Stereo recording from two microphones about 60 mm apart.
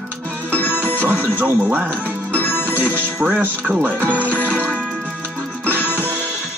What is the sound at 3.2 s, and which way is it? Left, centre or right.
Speech, right.